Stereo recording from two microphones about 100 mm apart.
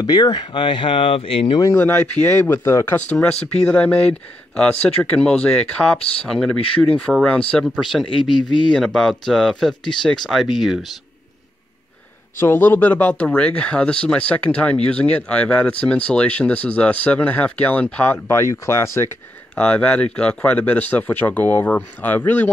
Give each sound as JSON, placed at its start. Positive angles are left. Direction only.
{"t": 0.0, "sound": "speech", "side_deg": 45}
{"t": 1.8, "sound": "speech", "side_deg": 20}
{"t": 8.0, "sound": "speech", "side_deg": 55}
{"t": 8.7, "sound": "speech", "side_deg": 5}
{"t": 12.4, "sound": "speech", "side_deg": 20}
{"t": 19.5, "sound": "speech", "side_deg": 10}